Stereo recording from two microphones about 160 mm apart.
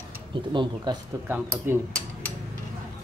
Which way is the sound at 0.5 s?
30° right (ahead or behind).